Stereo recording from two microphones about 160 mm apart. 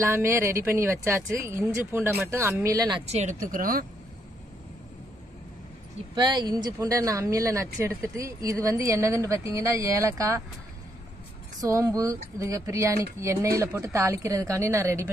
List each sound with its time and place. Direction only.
0.0 s speech: 15° right (ahead or behind)
3.1 s speech: 45° right (ahead or behind)
6.1 s speech: 25° right (ahead or behind)
11.6 s speech: 20° right (ahead or behind)